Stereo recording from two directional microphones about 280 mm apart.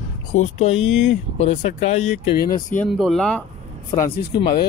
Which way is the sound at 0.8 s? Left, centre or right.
Left.